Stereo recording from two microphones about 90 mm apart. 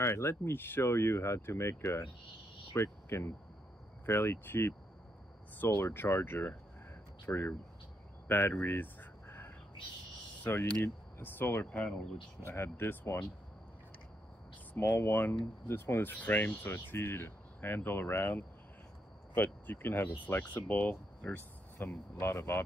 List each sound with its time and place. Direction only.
0.0 s speech: 30° left (ahead or behind)
8.3 s a sound: 25° left (ahead or behind)
10.4 s speech: 25° left (ahead or behind)
11.6 s speech: 15° left (ahead or behind)
12.4 s speech: 25° left (ahead or behind)
14.7 s speech: 25° left (ahead or behind)